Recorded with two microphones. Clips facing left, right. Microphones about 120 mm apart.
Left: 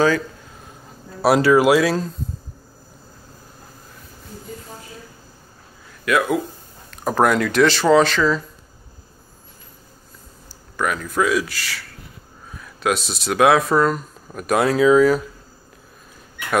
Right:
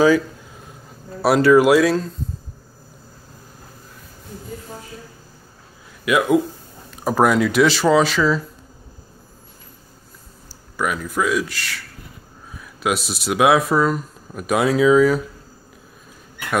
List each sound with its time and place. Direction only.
1.2 s speech: centre (ahead or behind)
6.0 s speech: 15° right (ahead or behind)
6.9 s speech: 5° right (ahead or behind)
10.8 s speech: 5° right (ahead or behind)